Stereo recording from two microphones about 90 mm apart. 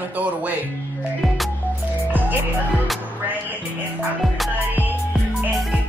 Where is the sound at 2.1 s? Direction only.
20° right (ahead or behind).